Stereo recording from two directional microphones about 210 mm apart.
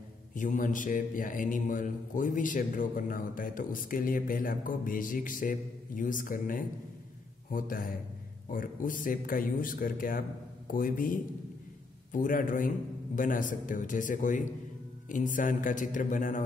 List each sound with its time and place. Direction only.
0.3 s a man's voice: 40° left (ahead or behind)